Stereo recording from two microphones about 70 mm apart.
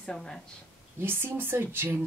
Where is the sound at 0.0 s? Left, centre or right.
Centre.